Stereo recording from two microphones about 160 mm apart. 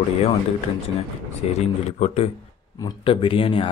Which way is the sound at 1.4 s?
40° left (ahead or behind).